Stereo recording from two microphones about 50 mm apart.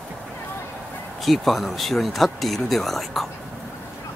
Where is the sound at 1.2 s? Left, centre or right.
Centre.